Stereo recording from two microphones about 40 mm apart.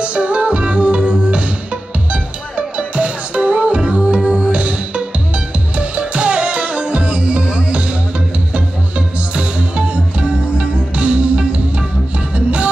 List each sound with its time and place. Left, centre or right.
0.0 s music: right
2.5 s music: right
7.4 s music: right
9.3 s music: right